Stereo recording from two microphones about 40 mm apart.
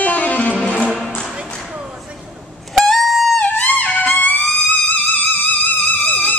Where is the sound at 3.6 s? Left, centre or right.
Left.